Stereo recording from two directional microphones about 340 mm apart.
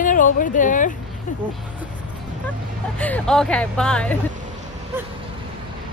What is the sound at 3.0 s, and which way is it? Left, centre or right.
Speech, centre.